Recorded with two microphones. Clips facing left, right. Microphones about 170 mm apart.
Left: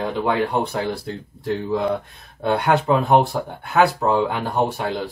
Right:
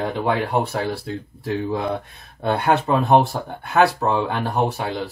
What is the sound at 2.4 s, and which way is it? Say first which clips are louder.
Speech: left 1 dB; centre (ahead or behind).